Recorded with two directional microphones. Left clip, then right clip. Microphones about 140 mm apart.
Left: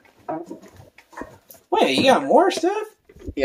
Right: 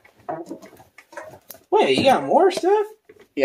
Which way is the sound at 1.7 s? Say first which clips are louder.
Even; 70° left (ahead or behind).